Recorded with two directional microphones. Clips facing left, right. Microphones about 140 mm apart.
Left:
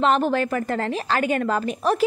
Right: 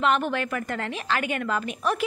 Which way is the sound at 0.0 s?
35° left (ahead or behind).